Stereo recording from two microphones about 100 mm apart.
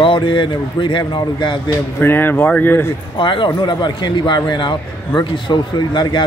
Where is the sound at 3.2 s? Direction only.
55° left (ahead or behind).